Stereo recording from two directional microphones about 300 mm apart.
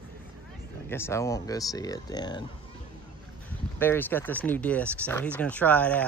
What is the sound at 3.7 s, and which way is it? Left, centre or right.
Speech, centre.